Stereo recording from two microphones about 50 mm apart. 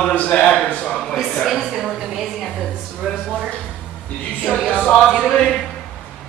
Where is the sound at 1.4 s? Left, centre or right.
Centre.